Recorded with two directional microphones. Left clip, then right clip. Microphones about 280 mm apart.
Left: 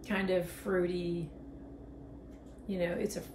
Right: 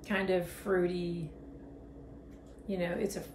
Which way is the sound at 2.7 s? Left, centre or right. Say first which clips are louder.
Even; centre.